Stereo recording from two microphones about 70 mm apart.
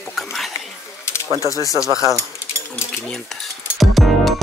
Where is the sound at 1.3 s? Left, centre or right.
Left.